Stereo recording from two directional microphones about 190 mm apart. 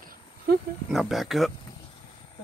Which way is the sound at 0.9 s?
Centre (ahead or behind).